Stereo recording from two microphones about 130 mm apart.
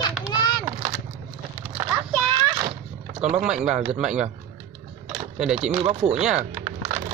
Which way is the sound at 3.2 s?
65° right (ahead or behind).